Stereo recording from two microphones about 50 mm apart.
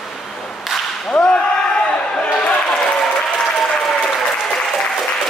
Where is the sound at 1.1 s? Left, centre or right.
Centre.